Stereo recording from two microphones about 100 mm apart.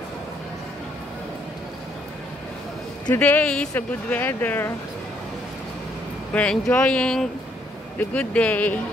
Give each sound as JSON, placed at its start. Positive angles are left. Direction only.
{"t": 3.1, "sound": "speech", "side_deg": 15}
{"t": 6.3, "sound": "speech", "side_deg": 10}